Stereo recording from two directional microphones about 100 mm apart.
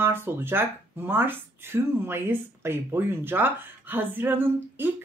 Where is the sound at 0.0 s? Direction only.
20° right (ahead or behind).